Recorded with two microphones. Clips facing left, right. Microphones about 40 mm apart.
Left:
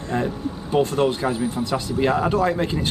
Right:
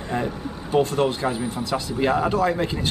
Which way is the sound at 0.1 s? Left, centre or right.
Centre.